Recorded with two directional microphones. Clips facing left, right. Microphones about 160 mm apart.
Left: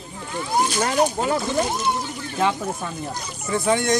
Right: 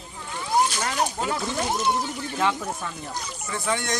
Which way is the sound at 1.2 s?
10° left (ahead or behind).